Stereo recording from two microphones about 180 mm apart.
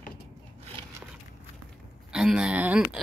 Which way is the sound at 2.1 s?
5° right (ahead or behind).